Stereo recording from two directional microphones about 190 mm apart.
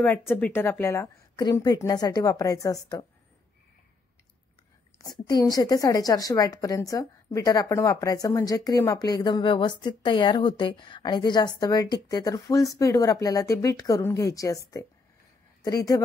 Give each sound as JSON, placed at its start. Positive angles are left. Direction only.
{"t": 0.0, "sound": "a woman's voice", "side_deg": 10}
{"t": 4.9, "sound": "speech", "side_deg": 20}